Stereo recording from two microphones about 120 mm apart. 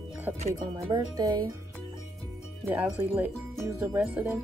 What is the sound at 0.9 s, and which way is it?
Speech, 35° right (ahead or behind).